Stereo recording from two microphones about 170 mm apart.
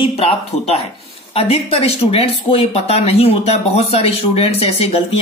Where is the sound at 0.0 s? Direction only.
35° left (ahead or behind).